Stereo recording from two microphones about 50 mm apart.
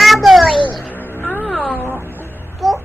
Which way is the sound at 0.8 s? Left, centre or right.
Left.